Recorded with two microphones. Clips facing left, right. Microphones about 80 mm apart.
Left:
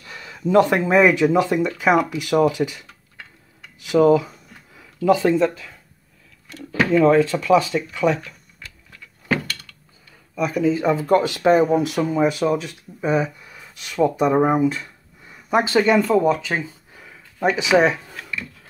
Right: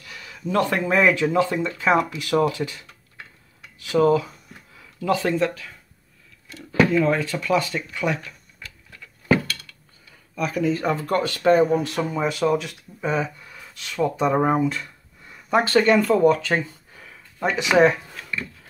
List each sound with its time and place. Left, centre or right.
0.0 s speech: left
3.8 s speech: centre
4.7 s a sound: centre
7.1 s speech: centre
10.3 s speech: centre
12.2 s speech: centre
13.0 s speech: centre
17.0 s a sound: centre